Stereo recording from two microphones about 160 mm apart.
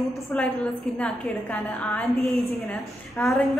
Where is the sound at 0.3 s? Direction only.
5° left (ahead or behind).